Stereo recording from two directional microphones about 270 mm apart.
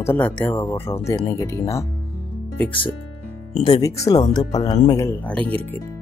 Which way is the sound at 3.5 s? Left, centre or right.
Left.